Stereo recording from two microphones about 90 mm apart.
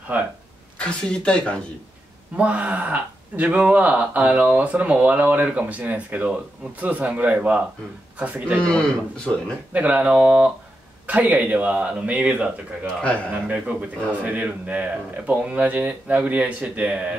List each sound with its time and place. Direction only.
0.7 s speech: 10° left (ahead or behind)
2.3 s speech: 15° right (ahead or behind)
8.5 s speech: 10° left (ahead or behind)
9.7 s speech: 15° right (ahead or behind)